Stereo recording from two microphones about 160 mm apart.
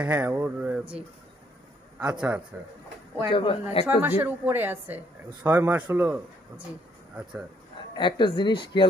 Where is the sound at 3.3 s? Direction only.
35° left (ahead or behind).